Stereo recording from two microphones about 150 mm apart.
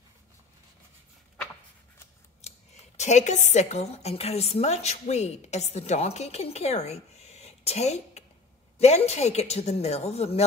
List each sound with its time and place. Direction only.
2.4 s scissors: 45° left (ahead or behind)
3.0 s a woman's voice: 50° left (ahead or behind)